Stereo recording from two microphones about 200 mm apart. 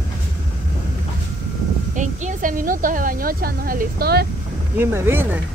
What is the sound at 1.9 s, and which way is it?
A woman's voice, 40° right (ahead or behind).